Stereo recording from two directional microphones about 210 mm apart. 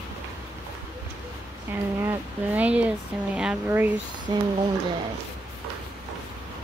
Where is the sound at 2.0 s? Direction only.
10° right (ahead or behind).